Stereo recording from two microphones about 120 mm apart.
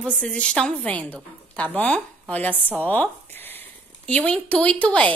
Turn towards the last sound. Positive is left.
turn(degrees=10)  # may be behind; listen again after turning